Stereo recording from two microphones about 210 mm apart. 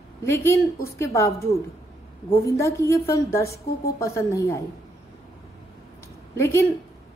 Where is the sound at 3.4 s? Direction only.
45° left (ahead or behind).